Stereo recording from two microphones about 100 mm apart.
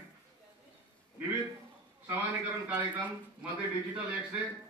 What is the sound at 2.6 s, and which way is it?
Speech, 15° right (ahead or behind).